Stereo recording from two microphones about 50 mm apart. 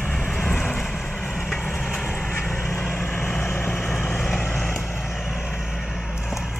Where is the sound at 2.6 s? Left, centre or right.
Left.